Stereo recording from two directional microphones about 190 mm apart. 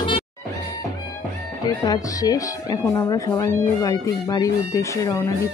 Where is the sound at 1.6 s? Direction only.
20° left (ahead or behind).